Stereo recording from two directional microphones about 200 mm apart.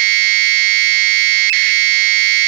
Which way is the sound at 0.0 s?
50° right (ahead or behind).